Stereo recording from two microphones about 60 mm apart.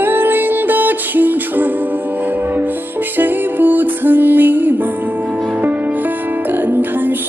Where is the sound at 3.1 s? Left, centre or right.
Right.